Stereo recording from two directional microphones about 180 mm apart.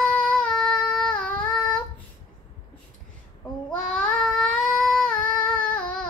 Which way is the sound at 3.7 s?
5° left (ahead or behind).